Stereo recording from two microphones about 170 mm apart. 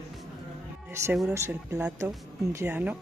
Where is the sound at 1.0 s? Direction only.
15° right (ahead or behind).